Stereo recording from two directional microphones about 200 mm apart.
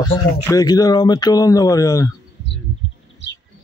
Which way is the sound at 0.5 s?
15° left (ahead or behind).